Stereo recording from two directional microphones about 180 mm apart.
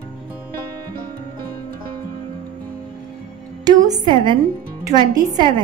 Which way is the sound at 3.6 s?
20° right (ahead or behind).